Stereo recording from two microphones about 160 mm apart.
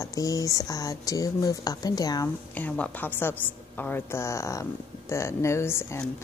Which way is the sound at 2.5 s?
10° left (ahead or behind).